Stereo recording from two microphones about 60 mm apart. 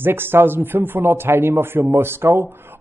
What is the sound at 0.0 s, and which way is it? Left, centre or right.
Speech, right.